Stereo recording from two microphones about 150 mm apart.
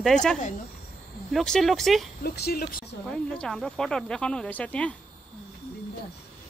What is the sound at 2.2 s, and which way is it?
Speech, 90° left.